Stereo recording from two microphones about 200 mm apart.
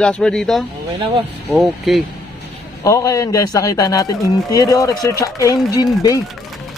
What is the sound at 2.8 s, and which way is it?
Speech, 15° left (ahead or behind).